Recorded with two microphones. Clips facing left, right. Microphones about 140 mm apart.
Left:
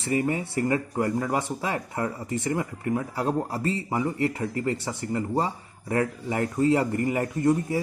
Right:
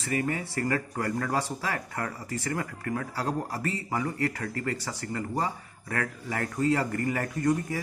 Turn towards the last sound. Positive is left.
turn(degrees=25)  # may be behind; listen again after turning